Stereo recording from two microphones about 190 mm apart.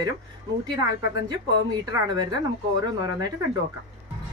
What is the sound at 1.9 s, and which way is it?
Speech, 20° right (ahead or behind).